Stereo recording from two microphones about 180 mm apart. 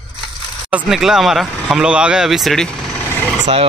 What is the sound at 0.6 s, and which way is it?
Speech, 5° right (ahead or behind).